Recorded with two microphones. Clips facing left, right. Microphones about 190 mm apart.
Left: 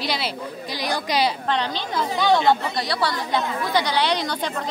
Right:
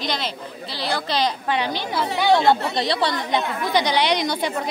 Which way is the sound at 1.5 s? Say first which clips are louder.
Right 1 dB; 10° right (ahead or behind).